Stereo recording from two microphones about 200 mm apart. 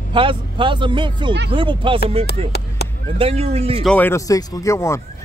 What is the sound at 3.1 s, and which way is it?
Speech, 30° right (ahead or behind).